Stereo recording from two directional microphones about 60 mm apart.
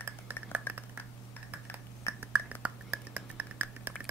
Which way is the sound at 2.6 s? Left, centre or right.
Right.